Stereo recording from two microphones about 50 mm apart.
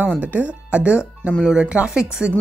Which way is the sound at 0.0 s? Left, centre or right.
Right.